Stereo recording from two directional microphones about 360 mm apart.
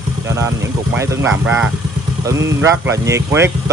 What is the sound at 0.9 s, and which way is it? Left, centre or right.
Speech, centre.